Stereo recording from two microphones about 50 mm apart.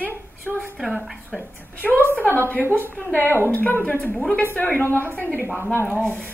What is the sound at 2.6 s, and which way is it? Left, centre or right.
Speech, right.